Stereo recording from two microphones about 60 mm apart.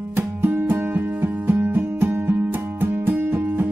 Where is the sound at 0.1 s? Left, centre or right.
Right.